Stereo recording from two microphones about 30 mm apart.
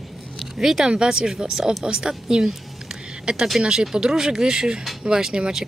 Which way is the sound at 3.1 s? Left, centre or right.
Right.